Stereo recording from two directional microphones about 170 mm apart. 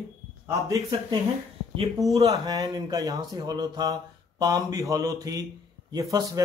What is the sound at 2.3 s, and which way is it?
A man's voice, 20° right (ahead or behind).